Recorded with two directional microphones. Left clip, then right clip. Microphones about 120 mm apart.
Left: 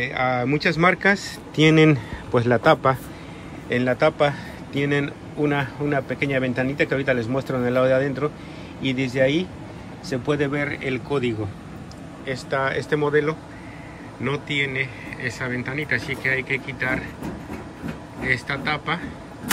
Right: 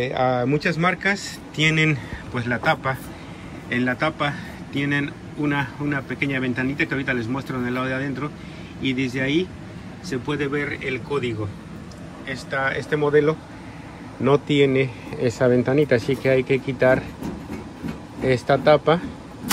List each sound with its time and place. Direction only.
0.0 s speech: 10° right (ahead or behind)
0.7 s speech: 15° left (ahead or behind)
3.6 s a man's voice: 10° left (ahead or behind)
14.2 s speech: 20° right (ahead or behind)
18.2 s speech: 20° right (ahead or behind)